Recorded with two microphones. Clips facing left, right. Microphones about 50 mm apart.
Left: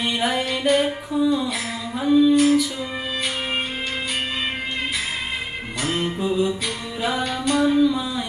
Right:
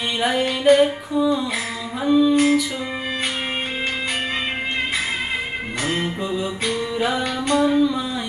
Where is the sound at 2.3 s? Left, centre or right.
Right.